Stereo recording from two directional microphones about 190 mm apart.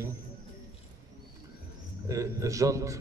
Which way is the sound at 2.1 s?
15° right (ahead or behind).